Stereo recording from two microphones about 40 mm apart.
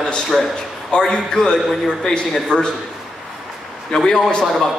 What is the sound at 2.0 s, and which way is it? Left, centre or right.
Speech, left.